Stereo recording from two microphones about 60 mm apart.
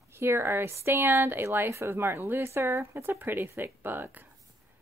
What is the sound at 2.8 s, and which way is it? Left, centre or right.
Speech, right.